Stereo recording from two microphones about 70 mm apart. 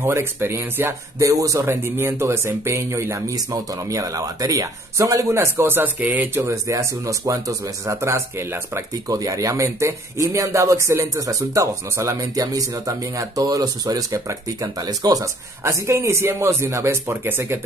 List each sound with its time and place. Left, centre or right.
0.0 s speech: right
1.3 s speech: right
3.9 s speech: right
6.3 s speech: right
6.7 s speech: right
9.1 s speech: right
15.6 s speech: right